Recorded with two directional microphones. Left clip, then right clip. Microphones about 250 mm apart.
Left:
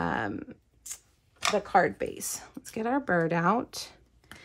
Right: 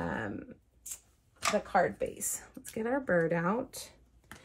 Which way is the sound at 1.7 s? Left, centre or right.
Left.